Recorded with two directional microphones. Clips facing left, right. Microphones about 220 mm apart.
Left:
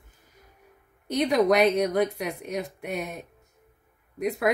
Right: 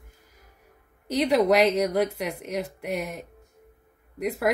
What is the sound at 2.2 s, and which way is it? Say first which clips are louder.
Speech: right 1 dB; 75° right (ahead or behind).